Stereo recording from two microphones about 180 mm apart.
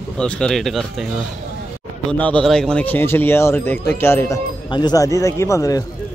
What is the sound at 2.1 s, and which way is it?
Speech, 5° left (ahead or behind).